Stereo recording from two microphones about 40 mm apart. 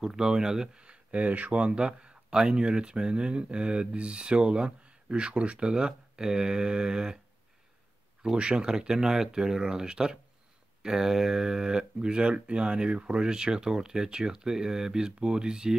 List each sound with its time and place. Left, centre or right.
0.0 s speech: centre
0.8 s speech: right
1.5 s speech: right
8.4 s speech: right